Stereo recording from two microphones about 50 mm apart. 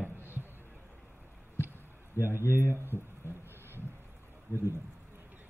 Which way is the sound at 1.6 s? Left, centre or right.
Left.